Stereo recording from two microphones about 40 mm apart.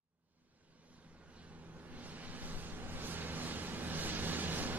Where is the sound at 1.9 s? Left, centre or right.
Right.